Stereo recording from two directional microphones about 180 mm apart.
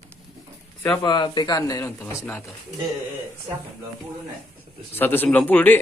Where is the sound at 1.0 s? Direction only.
25° left (ahead or behind).